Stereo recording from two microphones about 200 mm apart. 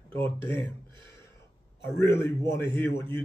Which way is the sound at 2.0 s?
10° left (ahead or behind).